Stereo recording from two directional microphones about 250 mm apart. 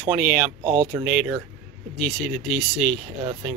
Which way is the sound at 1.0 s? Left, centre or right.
Centre.